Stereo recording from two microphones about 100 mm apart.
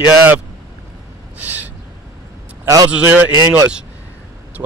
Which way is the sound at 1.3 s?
15° right (ahead or behind).